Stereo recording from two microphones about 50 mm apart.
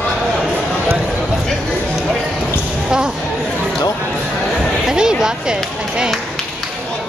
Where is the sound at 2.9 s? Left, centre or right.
Centre.